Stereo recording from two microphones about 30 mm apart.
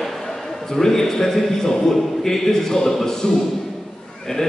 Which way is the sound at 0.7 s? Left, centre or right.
Centre.